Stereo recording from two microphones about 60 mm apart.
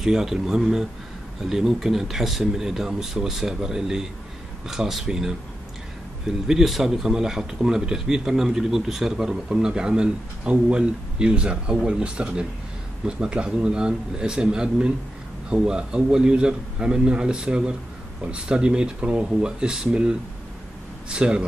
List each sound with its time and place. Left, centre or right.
0.0 s a man's voice: centre
6.4 s a man's voice: centre